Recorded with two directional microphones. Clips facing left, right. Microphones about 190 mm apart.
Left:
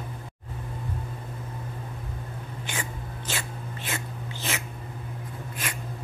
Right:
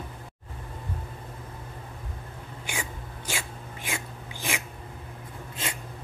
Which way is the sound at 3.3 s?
10° right (ahead or behind).